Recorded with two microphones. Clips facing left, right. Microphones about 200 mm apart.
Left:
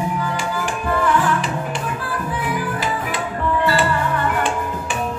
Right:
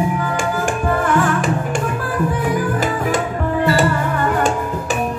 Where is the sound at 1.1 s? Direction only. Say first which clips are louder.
Right 3 dB; 50° right (ahead or behind).